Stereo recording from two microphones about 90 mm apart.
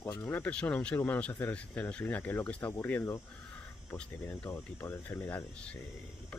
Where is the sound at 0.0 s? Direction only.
25° left (ahead or behind).